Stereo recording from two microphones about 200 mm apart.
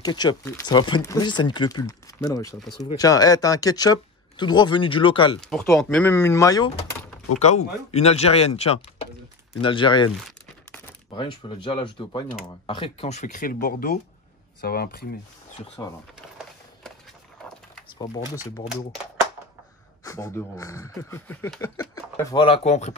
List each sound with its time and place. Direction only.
0.0 s speech: 20° left (ahead or behind)
5.4 s speech: 5° left (ahead or behind)
7.3 s speech: 35° left (ahead or behind)
11.1 s speech: 25° left (ahead or behind); by 15.0 s 50° left (ahead or behind)
15.8 s speech: 20° left (ahead or behind)
17.9 s speech: 20° left (ahead or behind)
20.1 s speech: 15° left (ahead or behind); by 22.9 s 35° left (ahead or behind)